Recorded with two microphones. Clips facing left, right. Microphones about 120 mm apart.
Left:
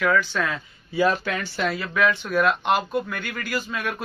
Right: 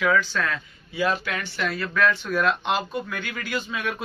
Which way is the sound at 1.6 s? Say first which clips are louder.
Left 1 dB; 20° left (ahead or behind).